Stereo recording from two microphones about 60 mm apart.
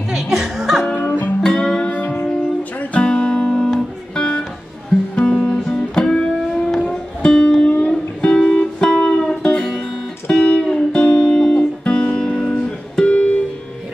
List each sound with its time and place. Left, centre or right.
0.1 s music: centre
1.4 s music: centre
1.9 s music: left
3.0 s music: centre